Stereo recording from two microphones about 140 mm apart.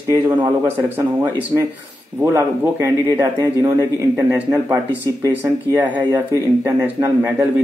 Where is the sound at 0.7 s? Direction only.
15° right (ahead or behind).